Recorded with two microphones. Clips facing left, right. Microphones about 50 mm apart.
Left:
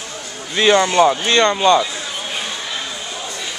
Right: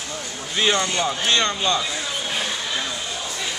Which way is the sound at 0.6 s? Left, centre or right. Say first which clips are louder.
Left 7 dB; left.